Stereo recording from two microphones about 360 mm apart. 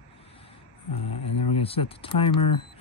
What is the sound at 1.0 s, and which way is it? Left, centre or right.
Speech, left.